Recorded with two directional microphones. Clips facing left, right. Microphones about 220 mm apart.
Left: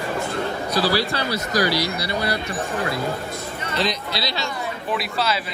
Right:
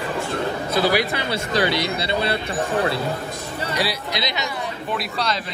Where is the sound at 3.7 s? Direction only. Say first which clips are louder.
Left 2 dB; 15° right (ahead or behind).